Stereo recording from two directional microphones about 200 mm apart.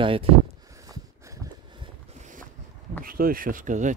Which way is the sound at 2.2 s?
40° right (ahead or behind).